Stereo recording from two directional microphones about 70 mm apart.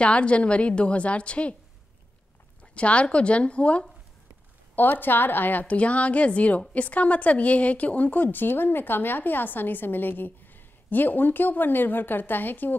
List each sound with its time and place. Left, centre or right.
0.0 s a woman's voice: centre
2.6 s a woman's voice: centre
4.7 s a woman's voice: left